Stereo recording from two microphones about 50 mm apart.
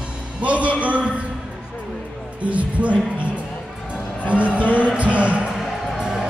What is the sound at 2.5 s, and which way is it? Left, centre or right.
Music, right.